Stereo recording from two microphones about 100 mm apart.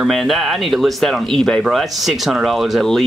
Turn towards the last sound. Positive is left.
turn(degrees=0)  # may be behind; listen again after turning